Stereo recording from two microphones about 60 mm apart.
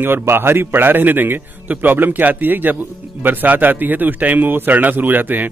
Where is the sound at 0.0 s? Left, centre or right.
Right.